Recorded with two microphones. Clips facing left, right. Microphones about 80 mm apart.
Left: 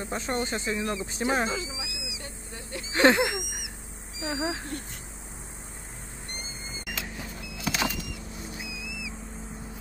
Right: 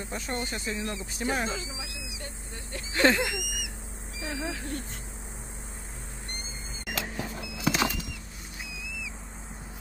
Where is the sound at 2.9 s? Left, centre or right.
Left.